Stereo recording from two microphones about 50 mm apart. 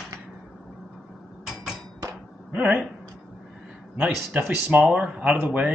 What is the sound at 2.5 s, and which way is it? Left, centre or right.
Speech, right.